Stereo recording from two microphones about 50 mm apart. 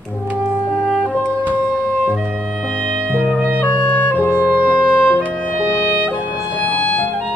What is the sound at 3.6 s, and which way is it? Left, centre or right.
Music, left.